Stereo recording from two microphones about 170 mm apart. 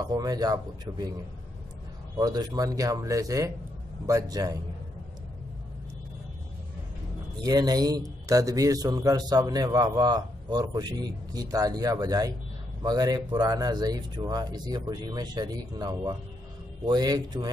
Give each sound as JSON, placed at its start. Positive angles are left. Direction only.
{"t": 0.0, "sound": "a man's voice", "side_deg": -20}
{"t": 2.1, "sound": "a man's voice", "side_deg": -20}
{"t": 7.4, "sound": "a man's voice", "side_deg": -25}